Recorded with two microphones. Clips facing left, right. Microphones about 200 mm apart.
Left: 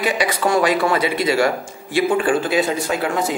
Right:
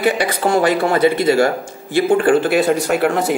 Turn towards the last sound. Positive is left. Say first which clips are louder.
# right 4 dB
turn(degrees=-65)  # may be behind; listen again after turning